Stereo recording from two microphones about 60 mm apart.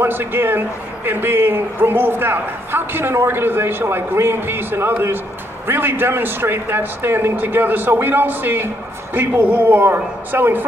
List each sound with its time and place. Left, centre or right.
0.0 s a man's voice: right